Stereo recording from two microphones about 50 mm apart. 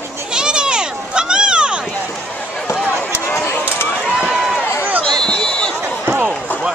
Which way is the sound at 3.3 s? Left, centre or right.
Left.